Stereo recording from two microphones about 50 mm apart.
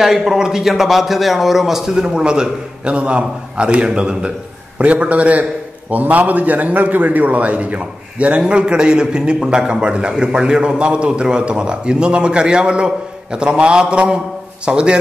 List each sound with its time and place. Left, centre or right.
0.0 s a man's voice: centre